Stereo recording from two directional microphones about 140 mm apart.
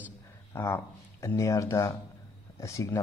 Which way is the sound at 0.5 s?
20° left (ahead or behind).